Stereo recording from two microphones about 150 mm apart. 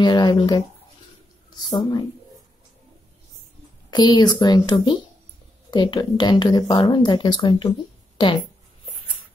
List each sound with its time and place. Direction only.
0.0 s a woman's voice: 30° left (ahead or behind)
1.7 s speech: 25° left (ahead or behind)
3.9 s a woman's voice: 25° left (ahead or behind)